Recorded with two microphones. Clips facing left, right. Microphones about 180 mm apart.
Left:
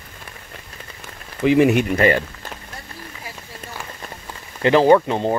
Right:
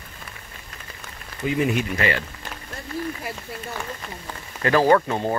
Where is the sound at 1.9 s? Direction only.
45° left (ahead or behind).